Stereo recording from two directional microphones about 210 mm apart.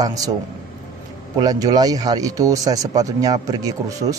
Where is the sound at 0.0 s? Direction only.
15° right (ahead or behind).